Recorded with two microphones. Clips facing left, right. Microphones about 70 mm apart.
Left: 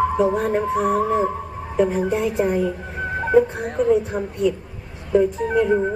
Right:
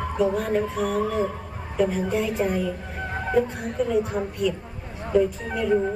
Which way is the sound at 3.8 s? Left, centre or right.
Left.